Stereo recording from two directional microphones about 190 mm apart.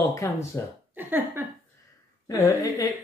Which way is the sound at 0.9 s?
10° right (ahead or behind).